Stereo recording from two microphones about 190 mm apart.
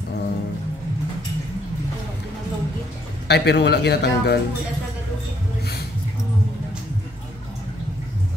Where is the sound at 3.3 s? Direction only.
60° left (ahead or behind).